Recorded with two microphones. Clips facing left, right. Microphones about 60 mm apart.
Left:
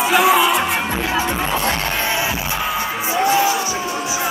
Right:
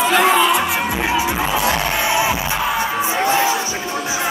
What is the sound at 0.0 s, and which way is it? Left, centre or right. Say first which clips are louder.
Music: even; centre.